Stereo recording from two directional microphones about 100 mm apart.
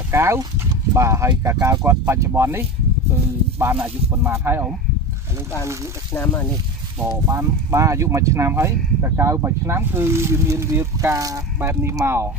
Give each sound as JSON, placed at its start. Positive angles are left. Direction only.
{"t": 0.1, "sound": "speech", "side_deg": -25}
{"t": 6.1, "sound": "speech", "side_deg": 20}
{"t": 7.2, "sound": "speech", "side_deg": -30}